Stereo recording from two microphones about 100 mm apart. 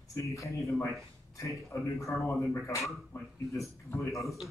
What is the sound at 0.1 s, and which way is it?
Speech, 30° left (ahead or behind).